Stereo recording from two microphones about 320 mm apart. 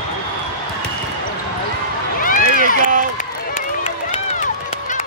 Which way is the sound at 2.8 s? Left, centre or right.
Right.